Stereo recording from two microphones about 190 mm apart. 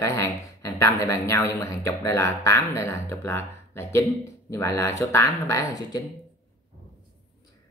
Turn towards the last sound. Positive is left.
turn(degrees=20)  # may be behind; listen again after turning